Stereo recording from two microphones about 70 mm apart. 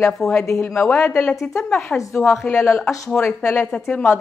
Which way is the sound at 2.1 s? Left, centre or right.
Left.